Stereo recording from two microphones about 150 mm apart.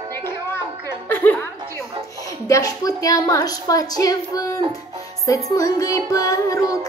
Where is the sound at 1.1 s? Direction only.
10° left (ahead or behind).